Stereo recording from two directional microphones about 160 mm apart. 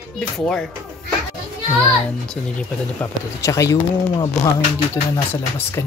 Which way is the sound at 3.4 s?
20° left (ahead or behind).